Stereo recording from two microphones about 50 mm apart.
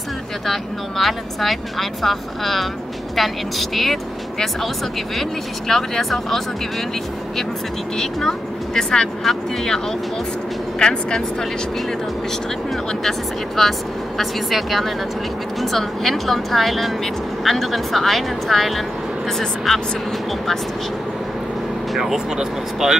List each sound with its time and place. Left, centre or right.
0.5 s speech: centre
8.0 s a woman's voice: centre
13.6 s speech: centre
21.9 s speech: centre